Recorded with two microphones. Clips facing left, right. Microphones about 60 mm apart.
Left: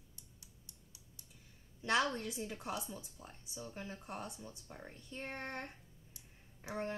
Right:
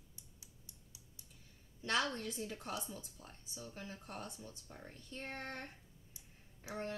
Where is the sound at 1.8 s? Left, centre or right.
Centre.